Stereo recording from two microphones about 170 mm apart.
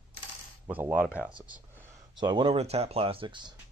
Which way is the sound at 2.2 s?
25° right (ahead or behind).